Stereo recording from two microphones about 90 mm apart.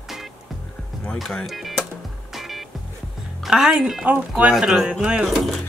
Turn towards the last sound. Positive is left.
turn(degrees=0)  # may be behind; listen again after turning